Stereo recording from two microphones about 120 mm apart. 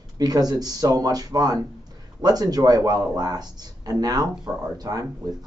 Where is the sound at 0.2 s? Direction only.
35° right (ahead or behind).